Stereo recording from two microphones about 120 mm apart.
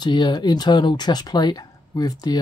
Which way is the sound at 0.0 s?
35° left (ahead or behind).